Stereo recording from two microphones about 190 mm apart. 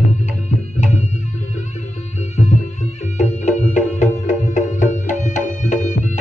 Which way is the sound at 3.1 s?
40° left (ahead or behind).